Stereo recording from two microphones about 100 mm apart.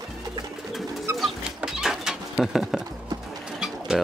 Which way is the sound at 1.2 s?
5° right (ahead or behind).